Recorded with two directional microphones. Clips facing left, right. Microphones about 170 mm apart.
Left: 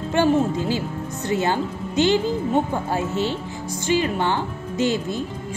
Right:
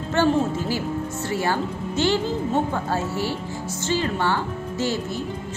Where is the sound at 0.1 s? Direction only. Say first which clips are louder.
Left 1 dB; 20° left (ahead or behind).